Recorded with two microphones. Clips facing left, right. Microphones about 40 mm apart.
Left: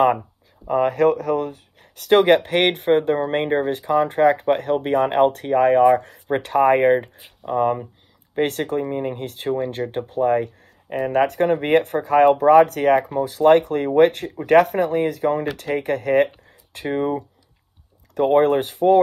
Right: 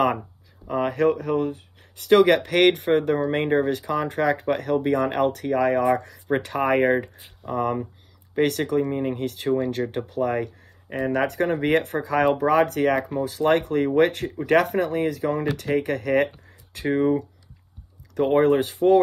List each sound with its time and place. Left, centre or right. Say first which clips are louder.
0.7 s speech: left 4 dB; left; by 7.7 s centre
8.4 s speech: even; left
11.1 s speech: left 5 dB; left
18.4 s speech: left 1 dB; left